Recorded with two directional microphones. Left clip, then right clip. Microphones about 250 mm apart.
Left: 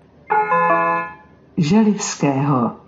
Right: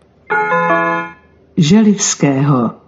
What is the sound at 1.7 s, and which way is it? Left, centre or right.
Speech, right.